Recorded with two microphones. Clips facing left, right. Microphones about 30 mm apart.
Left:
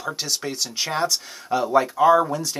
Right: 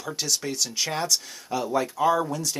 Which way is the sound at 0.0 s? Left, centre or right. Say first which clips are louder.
Left 2 dB; centre.